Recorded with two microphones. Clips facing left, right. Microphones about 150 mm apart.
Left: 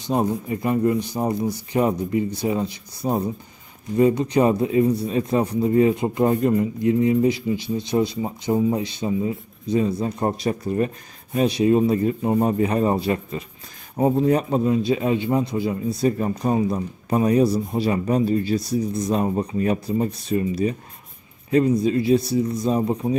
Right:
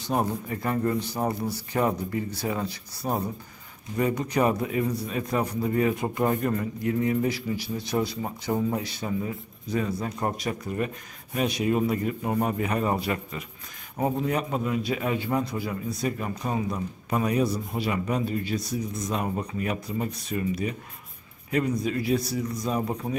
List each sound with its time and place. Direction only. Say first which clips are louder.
0.0 s a man's voice: left 5 dB; 20° left (ahead or behind)